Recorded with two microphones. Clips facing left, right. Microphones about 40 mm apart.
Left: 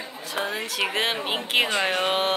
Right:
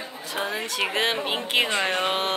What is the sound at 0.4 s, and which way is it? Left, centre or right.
Speech, centre.